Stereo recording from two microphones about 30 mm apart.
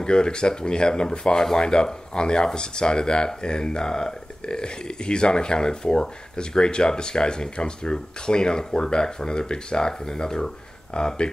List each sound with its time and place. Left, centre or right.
0.0 s speech: left